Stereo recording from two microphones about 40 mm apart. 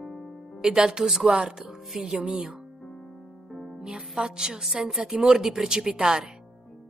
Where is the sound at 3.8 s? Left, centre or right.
Centre.